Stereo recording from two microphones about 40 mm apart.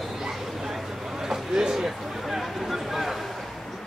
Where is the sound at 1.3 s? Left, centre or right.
Centre.